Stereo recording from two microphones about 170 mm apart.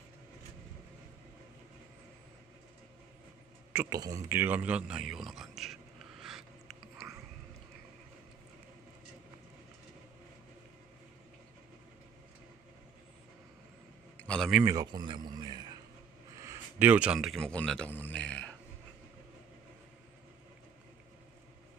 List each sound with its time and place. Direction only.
3.9 s speech: 20° right (ahead or behind); by 5.5 s centre (ahead or behind)
6.2 s a sound: centre (ahead or behind)
14.2 s speech: 5° left (ahead or behind)
14.6 s speech: 20° right (ahead or behind); by 18.4 s 5° left (ahead or behind)